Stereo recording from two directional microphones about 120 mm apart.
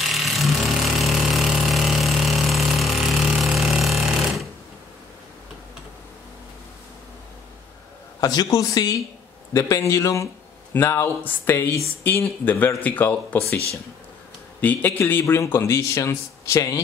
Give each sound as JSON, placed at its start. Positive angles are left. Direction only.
{"t": 0.0, "sound": "a sound", "side_deg": 0}
{"t": 8.2, "sound": "speech", "side_deg": 35}
{"t": 14.6, "sound": "speech", "side_deg": 15}